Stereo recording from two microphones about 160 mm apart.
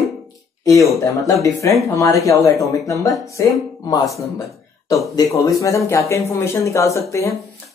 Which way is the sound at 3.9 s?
20° left (ahead or behind).